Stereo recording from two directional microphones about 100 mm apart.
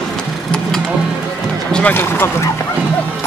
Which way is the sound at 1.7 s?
15° left (ahead or behind).